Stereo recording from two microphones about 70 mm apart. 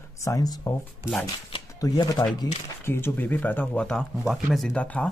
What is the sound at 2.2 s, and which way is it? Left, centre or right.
Speech, left.